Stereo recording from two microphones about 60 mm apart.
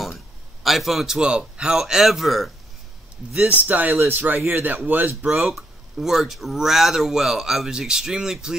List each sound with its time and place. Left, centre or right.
0.7 s a man's voice: centre
3.4 s speech: right
5.5 s speech: centre